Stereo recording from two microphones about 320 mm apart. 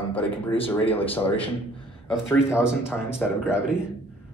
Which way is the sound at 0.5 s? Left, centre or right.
Centre.